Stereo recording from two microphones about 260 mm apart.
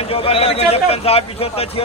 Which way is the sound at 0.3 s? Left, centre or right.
Left.